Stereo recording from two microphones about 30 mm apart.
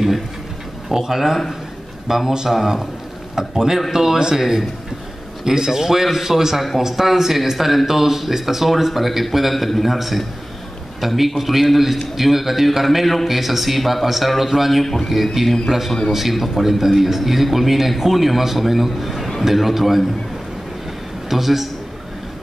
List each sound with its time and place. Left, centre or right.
0.8 s speech: centre
5.4 s a man's voice: centre
21.3 s a man's voice: centre